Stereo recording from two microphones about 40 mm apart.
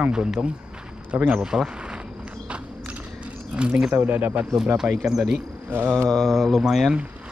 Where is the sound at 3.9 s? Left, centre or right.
Right.